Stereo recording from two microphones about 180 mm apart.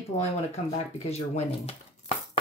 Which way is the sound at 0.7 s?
35° left (ahead or behind).